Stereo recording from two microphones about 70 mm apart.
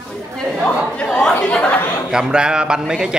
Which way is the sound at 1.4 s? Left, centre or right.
Centre.